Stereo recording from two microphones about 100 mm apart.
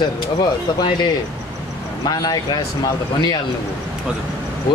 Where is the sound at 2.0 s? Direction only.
40° left (ahead or behind).